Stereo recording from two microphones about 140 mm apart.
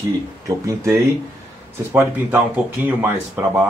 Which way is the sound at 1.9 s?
15° right (ahead or behind).